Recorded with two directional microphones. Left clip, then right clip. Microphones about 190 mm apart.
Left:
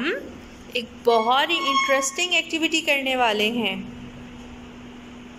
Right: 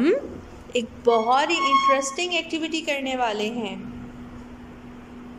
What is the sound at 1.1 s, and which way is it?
A woman's voice, 5° right (ahead or behind).